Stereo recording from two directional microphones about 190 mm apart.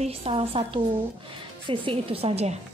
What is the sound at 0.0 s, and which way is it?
Speech, 30° right (ahead or behind).